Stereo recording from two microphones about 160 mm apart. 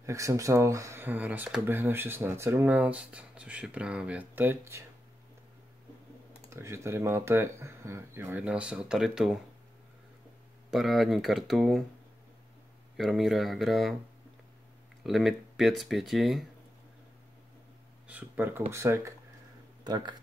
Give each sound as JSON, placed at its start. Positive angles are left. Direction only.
{"t": 0.0, "sound": "speech", "side_deg": -20}
{"t": 6.5, "sound": "speech", "side_deg": -15}
{"t": 10.7, "sound": "speech", "side_deg": 0}
{"t": 12.9, "sound": "speech", "side_deg": 0}
{"t": 15.0, "sound": "speech", "side_deg": 0}
{"t": 18.0, "sound": "speech", "side_deg": -10}